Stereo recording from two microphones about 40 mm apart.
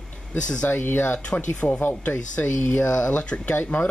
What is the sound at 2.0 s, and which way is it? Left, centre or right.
Speech, left.